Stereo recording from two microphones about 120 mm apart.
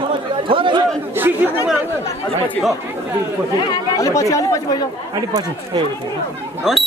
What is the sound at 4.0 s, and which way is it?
Speech, 25° left (ahead or behind).